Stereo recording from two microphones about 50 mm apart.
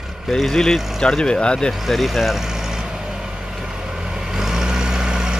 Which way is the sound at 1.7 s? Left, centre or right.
Centre.